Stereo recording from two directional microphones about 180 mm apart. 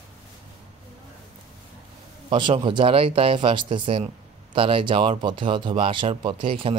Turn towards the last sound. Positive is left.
turn(degrees=-30)  # may be behind; listen again after turning